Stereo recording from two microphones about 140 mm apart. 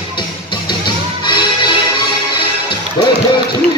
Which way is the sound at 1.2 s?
35° left (ahead or behind).